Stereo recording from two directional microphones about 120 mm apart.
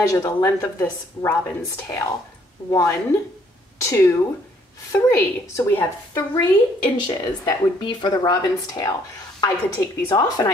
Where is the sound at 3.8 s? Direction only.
25° left (ahead or behind).